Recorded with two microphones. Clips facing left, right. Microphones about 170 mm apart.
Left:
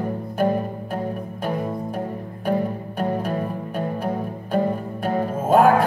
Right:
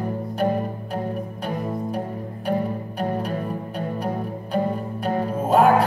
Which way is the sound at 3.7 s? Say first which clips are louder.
Left 2 dB; 50° left (ahead or behind).